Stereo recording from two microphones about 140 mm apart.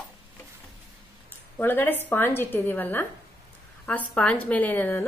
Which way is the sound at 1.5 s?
15° left (ahead or behind).